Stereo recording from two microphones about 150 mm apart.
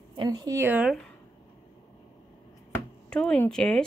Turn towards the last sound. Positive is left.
turn(degrees=5)  # may be behind; listen again after turning